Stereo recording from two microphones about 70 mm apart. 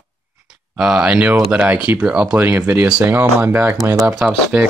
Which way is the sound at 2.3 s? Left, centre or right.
Right.